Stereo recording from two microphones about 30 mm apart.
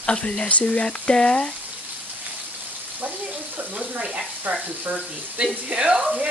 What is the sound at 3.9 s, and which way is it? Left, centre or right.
Speech, right.